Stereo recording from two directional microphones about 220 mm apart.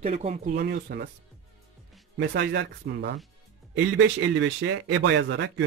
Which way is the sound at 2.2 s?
50° right (ahead or behind).